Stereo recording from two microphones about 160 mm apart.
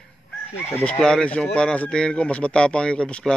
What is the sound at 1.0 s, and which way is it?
A man's voice, 5° left (ahead or behind).